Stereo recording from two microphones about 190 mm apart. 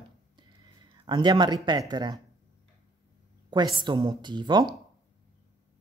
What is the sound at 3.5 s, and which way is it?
Speech, 25° right (ahead or behind).